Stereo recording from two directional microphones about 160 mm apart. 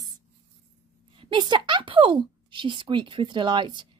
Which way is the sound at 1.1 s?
30° right (ahead or behind).